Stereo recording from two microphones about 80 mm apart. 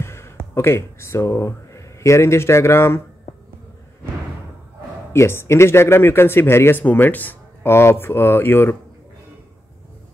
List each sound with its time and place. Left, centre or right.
0.0 s a sound: left
0.6 s speech: left
5.1 s speech: left